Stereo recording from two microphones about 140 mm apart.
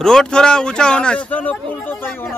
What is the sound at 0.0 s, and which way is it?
Speech, 5° left (ahead or behind).